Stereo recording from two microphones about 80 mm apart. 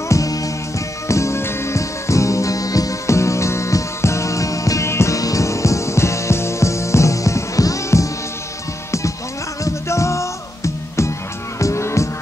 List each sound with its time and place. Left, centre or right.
0.1 s music: left
9.8 s music: left